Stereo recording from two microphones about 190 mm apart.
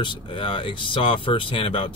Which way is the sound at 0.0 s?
25° left (ahead or behind).